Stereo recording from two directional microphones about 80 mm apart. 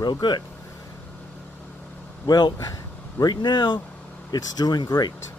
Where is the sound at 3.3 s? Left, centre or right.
Left.